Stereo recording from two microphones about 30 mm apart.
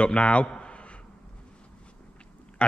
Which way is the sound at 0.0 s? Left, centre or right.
Left.